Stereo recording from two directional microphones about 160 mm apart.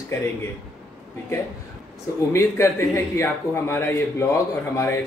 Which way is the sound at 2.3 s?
15° left (ahead or behind).